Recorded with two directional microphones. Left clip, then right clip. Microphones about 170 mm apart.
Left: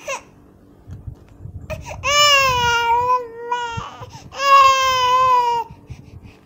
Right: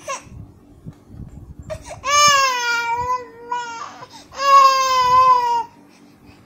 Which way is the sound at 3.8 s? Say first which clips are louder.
Left 1 dB; 50° left (ahead or behind).